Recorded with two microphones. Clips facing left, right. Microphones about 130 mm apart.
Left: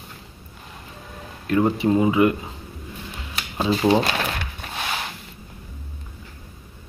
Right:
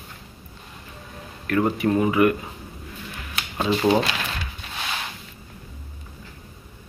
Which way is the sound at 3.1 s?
20° left (ahead or behind).